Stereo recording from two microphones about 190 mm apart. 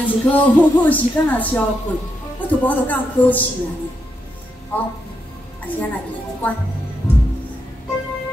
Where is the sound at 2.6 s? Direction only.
10° left (ahead or behind).